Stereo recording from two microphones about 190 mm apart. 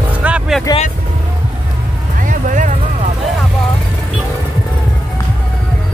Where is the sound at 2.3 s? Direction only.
40° right (ahead or behind).